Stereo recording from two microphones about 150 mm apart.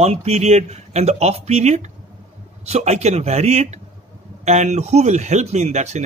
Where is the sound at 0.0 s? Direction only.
45° right (ahead or behind).